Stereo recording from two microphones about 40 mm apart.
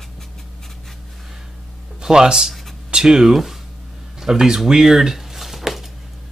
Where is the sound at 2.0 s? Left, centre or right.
Centre.